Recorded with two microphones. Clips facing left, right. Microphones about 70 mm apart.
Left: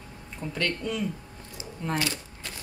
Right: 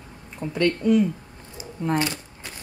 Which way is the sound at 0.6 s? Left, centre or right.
Centre.